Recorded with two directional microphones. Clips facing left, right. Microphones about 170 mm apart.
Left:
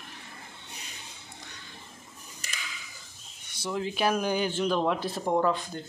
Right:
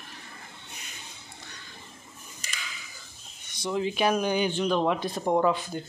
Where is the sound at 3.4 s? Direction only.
10° left (ahead or behind).